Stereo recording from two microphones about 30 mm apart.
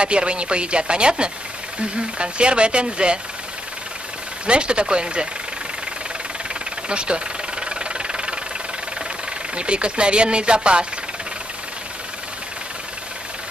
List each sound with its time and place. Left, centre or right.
0.0 s speech: right
4.5 s speech: right
6.9 s speech: right
7.6 s engine knocking: right
9.6 s speech: right